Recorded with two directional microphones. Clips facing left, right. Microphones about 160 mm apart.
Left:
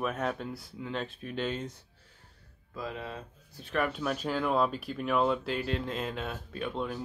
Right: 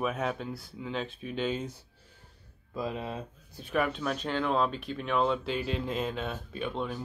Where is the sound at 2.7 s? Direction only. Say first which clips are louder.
Right 4 dB; 20° right (ahead or behind).